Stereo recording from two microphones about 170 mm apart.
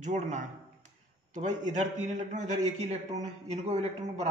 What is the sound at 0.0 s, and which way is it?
Speech, 45° right (ahead or behind).